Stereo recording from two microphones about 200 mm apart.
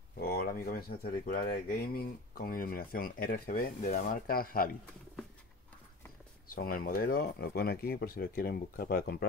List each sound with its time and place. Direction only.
0.2 s speech: 50° left (ahead or behind)
6.5 s speech: 45° left (ahead or behind)